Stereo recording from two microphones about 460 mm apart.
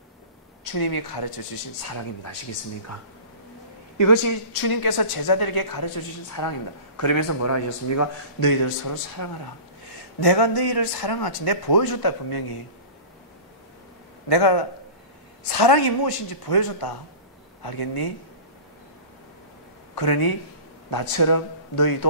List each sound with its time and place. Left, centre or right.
0.7 s a woman's voice: left
1.9 s a man's voice: left
4.0 s a woman's voice: left
10.2 s a woman's voice: left
14.3 s a man's voice: left
20.0 s a woman's voice: left